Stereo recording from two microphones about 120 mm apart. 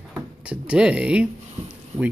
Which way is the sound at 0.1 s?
10° right (ahead or behind).